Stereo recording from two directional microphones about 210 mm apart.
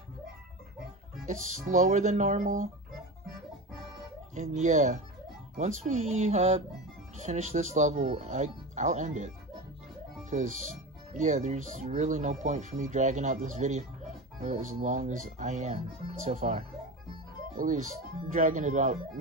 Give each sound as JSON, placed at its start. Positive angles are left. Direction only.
{"t": 1.2, "sound": "speech", "side_deg": -35}
{"t": 4.4, "sound": "speech", "side_deg": -35}
{"t": 10.3, "sound": "speech", "side_deg": -35}